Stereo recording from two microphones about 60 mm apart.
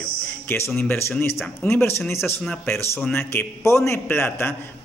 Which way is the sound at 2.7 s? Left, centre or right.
Left.